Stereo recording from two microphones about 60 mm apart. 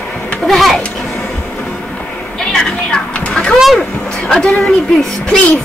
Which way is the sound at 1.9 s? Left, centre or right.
Centre.